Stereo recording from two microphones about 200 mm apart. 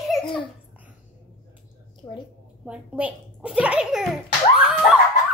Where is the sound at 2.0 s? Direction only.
15° left (ahead or behind).